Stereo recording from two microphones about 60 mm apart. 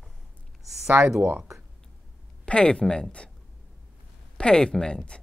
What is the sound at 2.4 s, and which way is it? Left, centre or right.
Speech, centre.